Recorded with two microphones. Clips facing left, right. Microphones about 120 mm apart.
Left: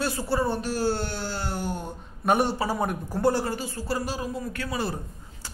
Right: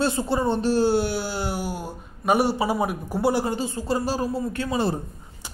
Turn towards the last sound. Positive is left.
turn(degrees=-25)  # may be behind; listen again after turning